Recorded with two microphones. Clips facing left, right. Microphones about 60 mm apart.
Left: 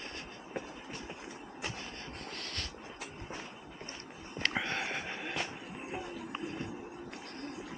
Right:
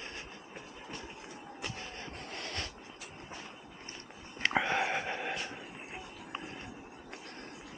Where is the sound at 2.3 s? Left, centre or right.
Right.